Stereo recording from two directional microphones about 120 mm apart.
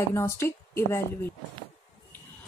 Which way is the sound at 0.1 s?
20° left (ahead or behind).